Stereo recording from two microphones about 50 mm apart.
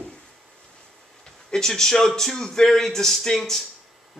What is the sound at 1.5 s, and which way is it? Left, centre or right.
A man's voice, centre.